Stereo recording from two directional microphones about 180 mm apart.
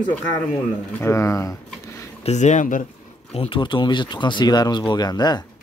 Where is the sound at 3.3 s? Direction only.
30° left (ahead or behind).